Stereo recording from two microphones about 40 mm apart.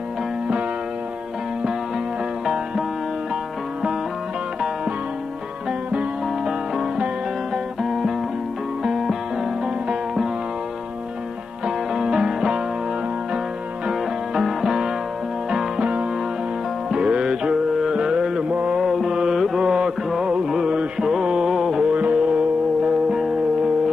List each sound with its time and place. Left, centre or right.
7.8 s music: centre
11.6 s music: centre
14.4 s music: centre
15.8 s music: right
18.5 s music: right
18.8 s music: centre
19.6 s music: centre
20.7 s mantra: centre
21.5 s music: centre
21.9 s music: right